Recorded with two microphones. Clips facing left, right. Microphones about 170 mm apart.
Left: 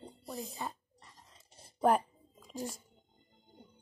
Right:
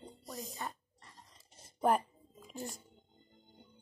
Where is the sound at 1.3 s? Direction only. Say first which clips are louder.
Left 2 dB; centre (ahead or behind).